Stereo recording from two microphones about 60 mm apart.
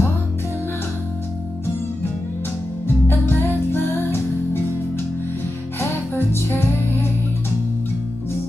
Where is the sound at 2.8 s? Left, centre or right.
Left.